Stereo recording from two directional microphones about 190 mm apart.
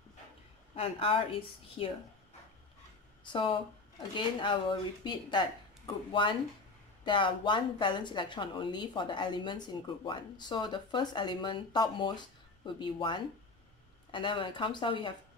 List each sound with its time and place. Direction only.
0.7 s speech: 30° left (ahead or behind)
3.3 s speech: 25° left (ahead or behind)